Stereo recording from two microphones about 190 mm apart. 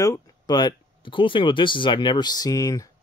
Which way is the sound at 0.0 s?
20° left (ahead or behind).